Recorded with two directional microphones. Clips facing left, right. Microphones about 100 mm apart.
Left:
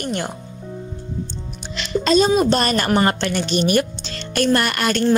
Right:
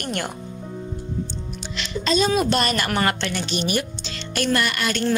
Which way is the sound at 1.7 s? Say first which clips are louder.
Left 6 dB; 40° left (ahead or behind).